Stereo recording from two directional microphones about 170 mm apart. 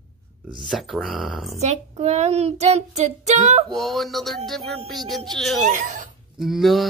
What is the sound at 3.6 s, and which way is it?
Speech, centre (ahead or behind).